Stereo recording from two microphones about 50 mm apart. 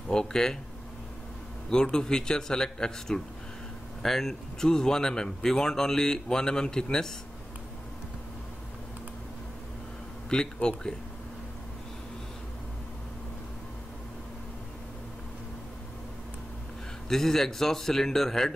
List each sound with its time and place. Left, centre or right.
0.1 s speech: centre
1.7 s speech: centre
10.3 s speech: centre
17.1 s speech: centre